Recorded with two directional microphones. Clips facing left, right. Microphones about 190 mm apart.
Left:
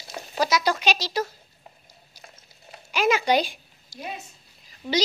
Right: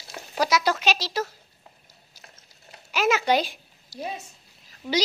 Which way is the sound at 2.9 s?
5° right (ahead or behind).